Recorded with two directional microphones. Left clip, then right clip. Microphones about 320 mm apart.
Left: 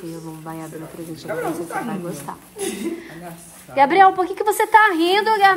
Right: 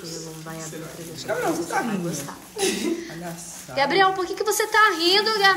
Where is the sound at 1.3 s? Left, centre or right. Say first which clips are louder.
Right 1 dB; centre.